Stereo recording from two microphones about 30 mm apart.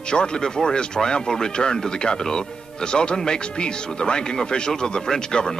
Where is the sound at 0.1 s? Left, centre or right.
Left.